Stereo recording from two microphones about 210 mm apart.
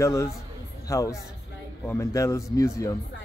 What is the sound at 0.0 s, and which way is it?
Speech, 15° left (ahead or behind).